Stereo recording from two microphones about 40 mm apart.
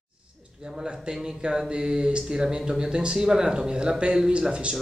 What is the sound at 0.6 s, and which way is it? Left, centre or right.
Speech, centre.